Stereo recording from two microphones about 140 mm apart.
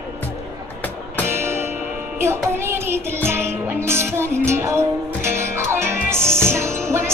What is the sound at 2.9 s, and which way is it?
Music, 15° right (ahead or behind).